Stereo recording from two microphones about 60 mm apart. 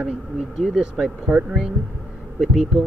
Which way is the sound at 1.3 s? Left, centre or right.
Centre.